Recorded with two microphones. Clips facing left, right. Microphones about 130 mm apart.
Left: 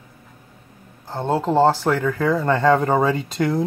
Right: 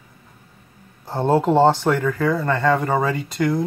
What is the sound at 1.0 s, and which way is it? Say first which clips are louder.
Speech: right 4 dB; 10° right (ahead or behind).